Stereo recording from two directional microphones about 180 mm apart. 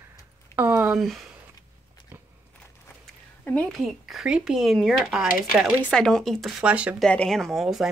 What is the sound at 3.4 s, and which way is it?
Speech, 5° left (ahead or behind).